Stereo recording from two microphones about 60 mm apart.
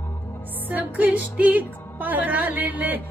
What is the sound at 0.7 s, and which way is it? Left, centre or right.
Music, right.